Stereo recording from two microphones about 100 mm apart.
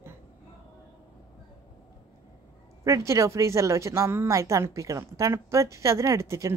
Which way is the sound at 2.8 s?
30° right (ahead or behind).